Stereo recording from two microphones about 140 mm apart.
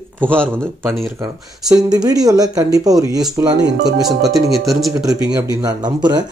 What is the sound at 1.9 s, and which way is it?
Speech, 30° right (ahead or behind).